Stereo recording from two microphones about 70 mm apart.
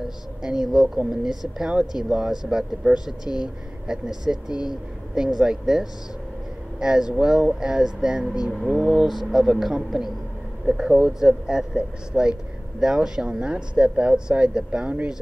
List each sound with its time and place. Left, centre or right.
0.4 s speech: centre